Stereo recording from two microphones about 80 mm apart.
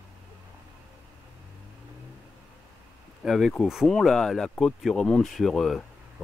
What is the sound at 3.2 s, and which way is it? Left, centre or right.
Speech, centre.